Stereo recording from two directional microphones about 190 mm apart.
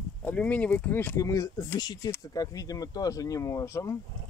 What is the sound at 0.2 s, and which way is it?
Speech, 10° left (ahead or behind).